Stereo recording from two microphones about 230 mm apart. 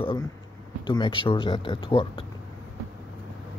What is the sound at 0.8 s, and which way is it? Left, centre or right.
Speech, centre.